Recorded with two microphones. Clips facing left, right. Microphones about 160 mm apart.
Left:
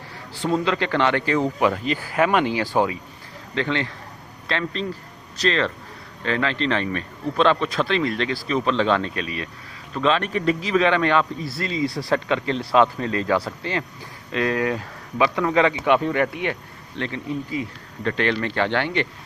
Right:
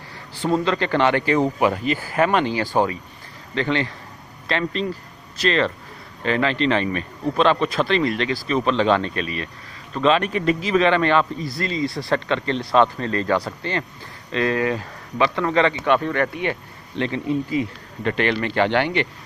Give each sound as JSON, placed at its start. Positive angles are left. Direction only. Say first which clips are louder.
{"t": 0.7, "sound": "a man's voice", "louder": "right 2 dB", "side_deg": 0}
{"t": 1.9, "sound": "a man's voice", "louder": "right 1 dB", "side_deg": 0}
{"t": 9.9, "sound": "a man's voice", "louder": "right 2 dB", "side_deg": -5}
{"t": 17.0, "sound": "speech", "louder": "right 5 dB", "side_deg": -20}
{"t": 18.0, "sound": "a man's voice", "louder": "right 1 dB", "side_deg": -10}